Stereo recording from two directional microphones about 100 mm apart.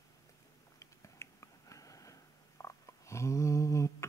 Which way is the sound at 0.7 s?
30° left (ahead or behind).